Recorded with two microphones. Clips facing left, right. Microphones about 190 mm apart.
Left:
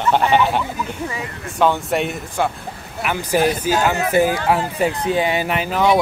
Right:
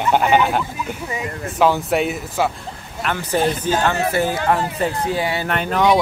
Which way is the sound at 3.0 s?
10° left (ahead or behind).